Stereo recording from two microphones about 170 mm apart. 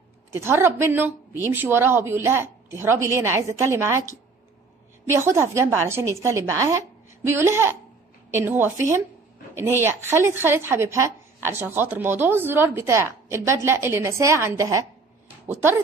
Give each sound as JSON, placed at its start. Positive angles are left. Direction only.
{"t": 0.3, "sound": "speech", "side_deg": -15}